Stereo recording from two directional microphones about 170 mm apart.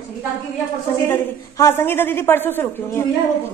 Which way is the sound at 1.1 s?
15° left (ahead or behind).